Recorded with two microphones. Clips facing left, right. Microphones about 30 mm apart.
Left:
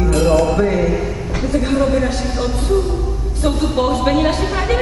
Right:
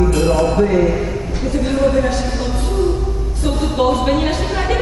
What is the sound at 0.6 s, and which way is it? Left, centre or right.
Speech, centre.